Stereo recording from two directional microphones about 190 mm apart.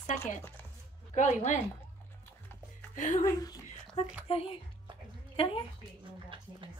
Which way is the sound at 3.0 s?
40° left (ahead or behind).